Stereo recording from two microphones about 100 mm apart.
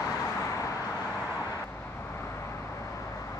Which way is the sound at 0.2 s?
35° left (ahead or behind).